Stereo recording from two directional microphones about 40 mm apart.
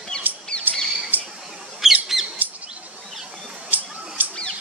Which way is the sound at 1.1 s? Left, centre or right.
Right.